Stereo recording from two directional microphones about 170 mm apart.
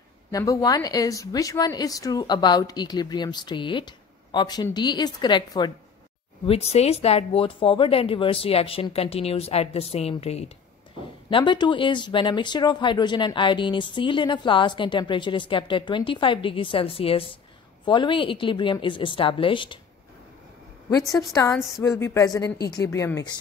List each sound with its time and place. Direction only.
0.3 s speech: 20° left (ahead or behind)
6.4 s speech: 35° left (ahead or behind)
21.1 s speech: 20° left (ahead or behind)